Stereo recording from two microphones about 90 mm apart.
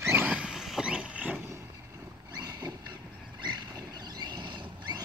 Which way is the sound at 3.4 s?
50° right (ahead or behind).